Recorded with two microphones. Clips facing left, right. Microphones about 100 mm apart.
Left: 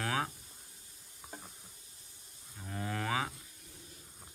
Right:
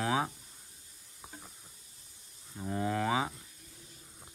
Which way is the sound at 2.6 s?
25° right (ahead or behind).